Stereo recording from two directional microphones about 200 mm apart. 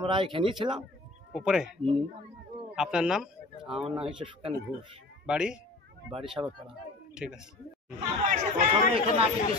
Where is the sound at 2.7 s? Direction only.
5° right (ahead or behind).